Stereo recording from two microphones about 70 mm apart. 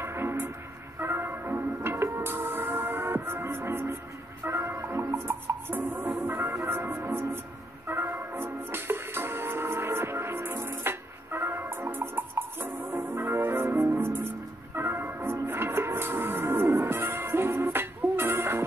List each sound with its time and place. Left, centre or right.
0.0 s train: right
0.9 s music: right